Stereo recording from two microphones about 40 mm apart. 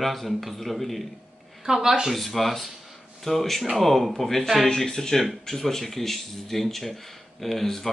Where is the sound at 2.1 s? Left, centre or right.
Centre.